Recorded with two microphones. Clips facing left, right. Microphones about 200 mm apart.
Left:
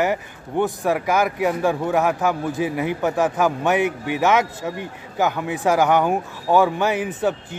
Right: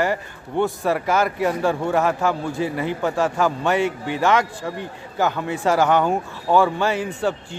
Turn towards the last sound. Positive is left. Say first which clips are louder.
# left 1 dB
turn(degrees=15)  # may be behind; listen again after turning